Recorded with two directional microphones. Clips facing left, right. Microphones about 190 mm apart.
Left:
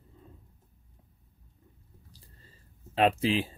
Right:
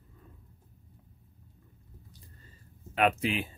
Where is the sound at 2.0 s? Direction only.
30° left (ahead or behind).